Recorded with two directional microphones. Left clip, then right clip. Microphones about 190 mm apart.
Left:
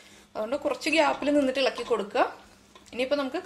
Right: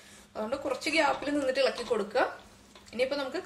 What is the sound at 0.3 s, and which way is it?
A woman's voice, 45° left (ahead or behind).